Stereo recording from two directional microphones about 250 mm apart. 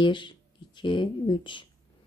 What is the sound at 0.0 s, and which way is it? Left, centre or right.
Speech, centre.